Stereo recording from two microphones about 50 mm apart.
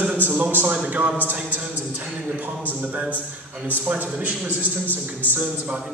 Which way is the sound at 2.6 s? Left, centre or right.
Right.